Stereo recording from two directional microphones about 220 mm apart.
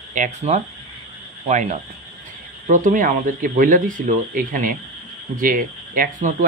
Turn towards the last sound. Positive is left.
turn(degrees=-35)  # may be behind; listen again after turning